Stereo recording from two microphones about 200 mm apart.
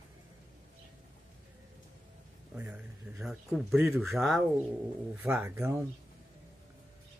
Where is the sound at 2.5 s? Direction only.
5° right (ahead or behind).